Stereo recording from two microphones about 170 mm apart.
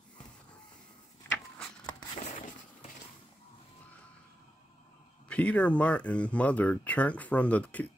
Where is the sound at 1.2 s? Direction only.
10° left (ahead or behind).